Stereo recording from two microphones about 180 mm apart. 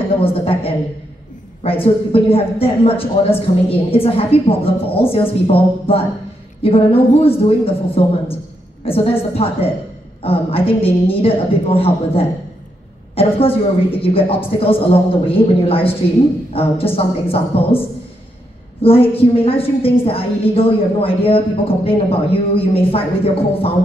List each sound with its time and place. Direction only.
0.2 s a woman's voice: 30° left (ahead or behind)